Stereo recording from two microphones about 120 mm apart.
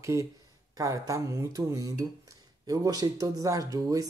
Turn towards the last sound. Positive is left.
turn(degrees=-25)  # may be behind; listen again after turning